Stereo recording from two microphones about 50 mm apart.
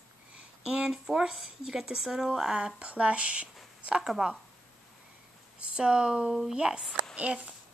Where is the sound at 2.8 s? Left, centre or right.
Right.